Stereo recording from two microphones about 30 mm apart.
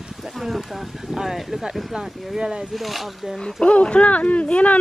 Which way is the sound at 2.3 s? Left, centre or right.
Right.